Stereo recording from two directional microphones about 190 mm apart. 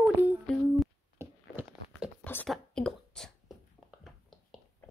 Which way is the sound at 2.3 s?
5° left (ahead or behind).